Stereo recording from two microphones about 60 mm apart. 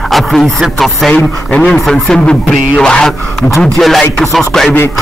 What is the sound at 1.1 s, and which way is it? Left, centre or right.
Speech, left.